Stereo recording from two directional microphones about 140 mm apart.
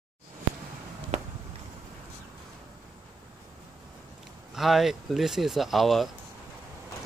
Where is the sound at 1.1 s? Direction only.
50° right (ahead or behind).